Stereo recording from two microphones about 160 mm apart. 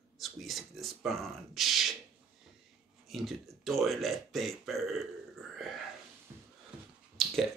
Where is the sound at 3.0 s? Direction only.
Centre (ahead or behind).